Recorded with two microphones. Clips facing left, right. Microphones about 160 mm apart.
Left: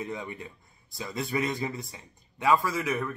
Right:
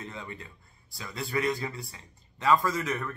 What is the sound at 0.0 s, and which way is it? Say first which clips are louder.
A man's voice: left 5 dB; 15° left (ahead or behind).